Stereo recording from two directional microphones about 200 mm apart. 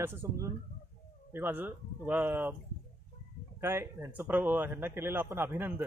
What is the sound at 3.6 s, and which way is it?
A man's voice, 10° right (ahead or behind).